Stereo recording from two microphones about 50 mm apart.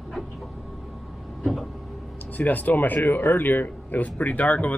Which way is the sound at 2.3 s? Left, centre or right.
Left.